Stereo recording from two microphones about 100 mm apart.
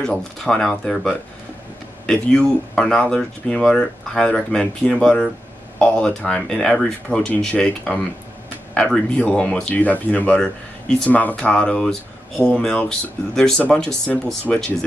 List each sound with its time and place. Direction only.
0.0 s speech: 5° left (ahead or behind)
2.3 s speech: 5° left (ahead or behind)